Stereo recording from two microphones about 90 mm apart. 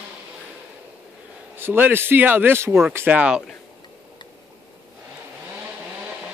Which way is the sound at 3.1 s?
15° right (ahead or behind).